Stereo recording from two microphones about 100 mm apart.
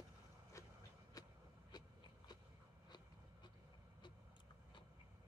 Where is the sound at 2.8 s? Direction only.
45° left (ahead or behind).